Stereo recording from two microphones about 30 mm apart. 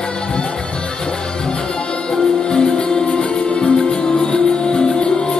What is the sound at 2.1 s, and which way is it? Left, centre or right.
Music, left.